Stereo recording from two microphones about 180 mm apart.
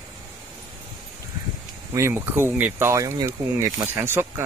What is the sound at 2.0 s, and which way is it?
Speech, 15° right (ahead or behind).